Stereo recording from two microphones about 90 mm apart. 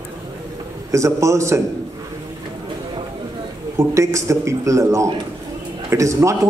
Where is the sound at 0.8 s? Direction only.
35° right (ahead or behind).